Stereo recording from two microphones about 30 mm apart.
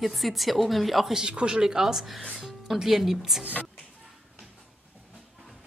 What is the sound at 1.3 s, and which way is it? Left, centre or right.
Speech, right.